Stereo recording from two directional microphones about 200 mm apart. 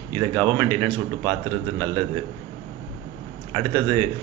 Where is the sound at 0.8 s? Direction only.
20° right (ahead or behind).